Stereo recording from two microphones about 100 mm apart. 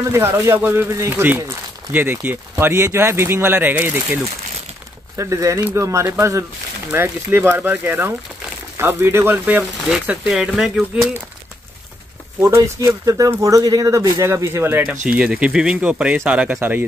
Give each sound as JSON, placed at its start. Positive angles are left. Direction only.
{"t": 0.1, "sound": "speech", "side_deg": -25}
{"t": 5.1, "sound": "speech", "side_deg": -30}
{"t": 12.4, "sound": "speech", "side_deg": -30}
{"t": 14.9, "sound": "speech", "side_deg": -10}